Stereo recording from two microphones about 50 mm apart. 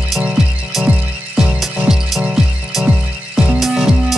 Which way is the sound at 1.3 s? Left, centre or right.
Centre.